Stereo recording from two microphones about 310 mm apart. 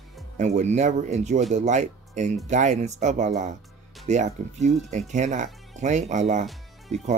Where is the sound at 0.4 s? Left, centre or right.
Right.